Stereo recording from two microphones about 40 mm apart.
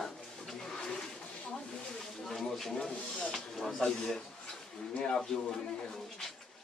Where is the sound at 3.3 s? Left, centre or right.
Centre.